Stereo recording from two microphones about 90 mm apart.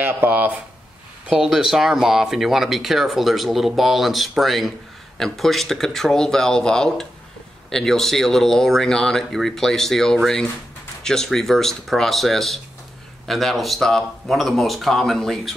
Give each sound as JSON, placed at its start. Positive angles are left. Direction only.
{"t": 0.0, "sound": "speech", "side_deg": -20}
{"t": 1.3, "sound": "speech", "side_deg": -5}